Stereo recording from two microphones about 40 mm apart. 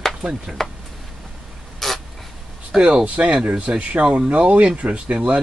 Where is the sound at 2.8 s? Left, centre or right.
Centre.